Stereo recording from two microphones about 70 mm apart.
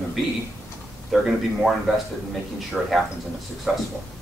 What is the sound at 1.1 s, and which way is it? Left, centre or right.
Speech, centre.